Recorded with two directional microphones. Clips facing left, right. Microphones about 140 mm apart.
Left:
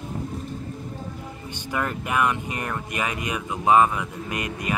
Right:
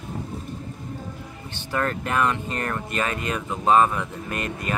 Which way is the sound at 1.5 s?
15° left (ahead or behind).